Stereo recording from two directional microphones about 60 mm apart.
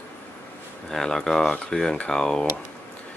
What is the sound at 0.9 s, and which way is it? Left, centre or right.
Speech, centre.